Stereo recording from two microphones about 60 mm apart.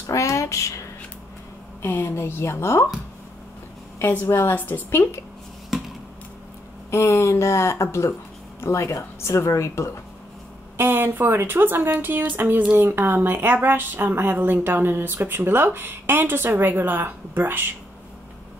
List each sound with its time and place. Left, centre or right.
0.0 s a sound: left
1.8 s a woman's voice: left
4.3 s a woman's voice: left
4.9 s a woman's voice: left
6.9 s a woman's voice: left
10.8 s a woman's voice: right